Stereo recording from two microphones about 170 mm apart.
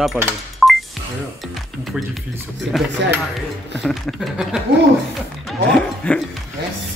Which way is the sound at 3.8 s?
Centre (ahead or behind).